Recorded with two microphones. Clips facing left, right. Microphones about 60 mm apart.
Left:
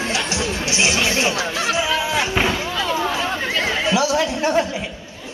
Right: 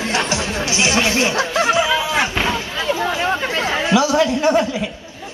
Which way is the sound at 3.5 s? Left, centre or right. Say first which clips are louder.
Right 1 dB; right.